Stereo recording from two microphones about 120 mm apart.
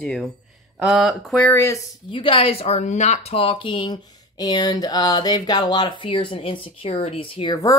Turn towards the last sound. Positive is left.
turn(degrees=30)  # may be behind; listen again after turning